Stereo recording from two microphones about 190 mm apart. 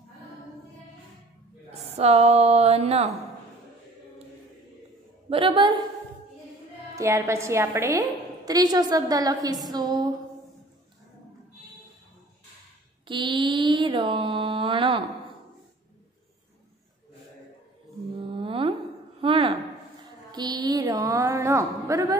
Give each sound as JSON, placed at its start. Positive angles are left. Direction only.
{"t": 1.7, "sound": "speech", "side_deg": -35}
{"t": 5.3, "sound": "mantra", "side_deg": -25}
{"t": 7.0, "sound": "a woman's voice", "side_deg": -15}
{"t": 8.5, "sound": "mantra", "side_deg": -20}
{"t": 13.0, "sound": "mantra", "side_deg": -25}
{"t": 18.4, "sound": "a sound", "side_deg": -30}
{"t": 20.2, "sound": "mantra", "side_deg": -20}